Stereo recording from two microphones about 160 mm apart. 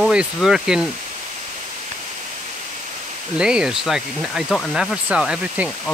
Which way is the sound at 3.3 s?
5° right (ahead or behind).